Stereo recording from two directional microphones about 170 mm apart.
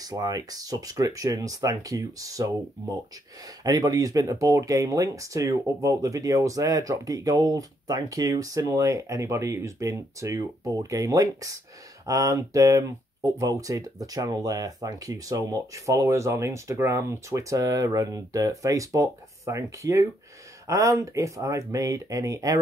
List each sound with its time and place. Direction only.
0.0 s speech: 20° right (ahead or behind)
3.6 s speech: 20° right (ahead or behind)